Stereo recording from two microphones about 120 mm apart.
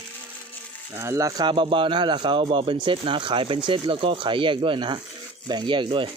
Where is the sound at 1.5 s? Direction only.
45° right (ahead or behind).